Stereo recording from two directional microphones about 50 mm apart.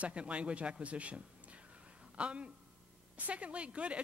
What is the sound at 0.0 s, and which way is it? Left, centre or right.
A woman's voice, right.